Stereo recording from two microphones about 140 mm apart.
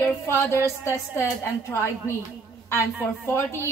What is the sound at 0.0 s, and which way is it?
A woman's voice, 15° left (ahead or behind).